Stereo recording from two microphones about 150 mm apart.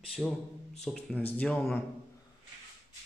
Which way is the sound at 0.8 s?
5° left (ahead or behind).